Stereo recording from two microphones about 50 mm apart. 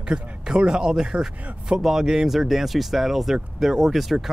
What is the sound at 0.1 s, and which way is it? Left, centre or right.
Speech, centre.